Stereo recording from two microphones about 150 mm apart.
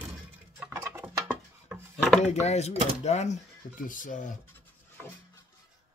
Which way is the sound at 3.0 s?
50° left (ahead or behind).